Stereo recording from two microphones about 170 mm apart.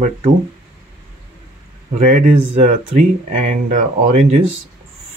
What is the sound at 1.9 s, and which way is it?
Speech, 50° right (ahead or behind).